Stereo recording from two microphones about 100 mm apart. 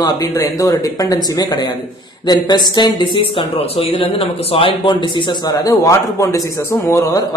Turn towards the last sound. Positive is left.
turn(degrees=30)  # may be behind; listen again after turning